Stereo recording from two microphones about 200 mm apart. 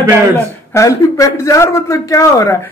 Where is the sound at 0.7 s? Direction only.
15° left (ahead or behind).